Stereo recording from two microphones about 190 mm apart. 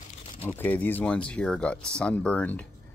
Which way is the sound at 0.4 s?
10° left (ahead or behind).